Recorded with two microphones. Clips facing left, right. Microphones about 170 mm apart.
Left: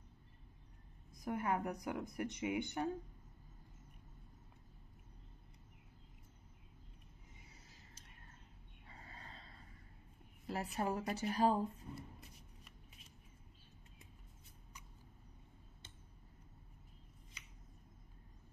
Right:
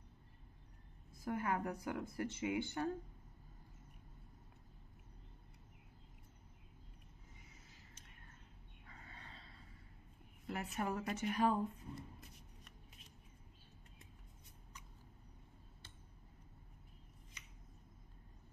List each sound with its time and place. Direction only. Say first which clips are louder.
1.1 s a woman's voice: left 1 dB; 20° left (ahead or behind)
8.8 s a sound: left 2 dB; 30° left (ahead or behind)
10.4 s speech: left 2 dB; 30° left (ahead or behind)
12.2 s shuffling cards: even; centre (ahead or behind)